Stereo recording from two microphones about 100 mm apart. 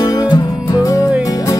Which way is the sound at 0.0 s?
40° left (ahead or behind).